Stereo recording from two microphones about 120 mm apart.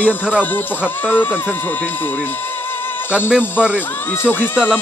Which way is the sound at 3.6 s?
10° right (ahead or behind).